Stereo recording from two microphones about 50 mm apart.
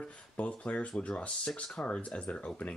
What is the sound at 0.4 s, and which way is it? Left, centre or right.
Speech, left.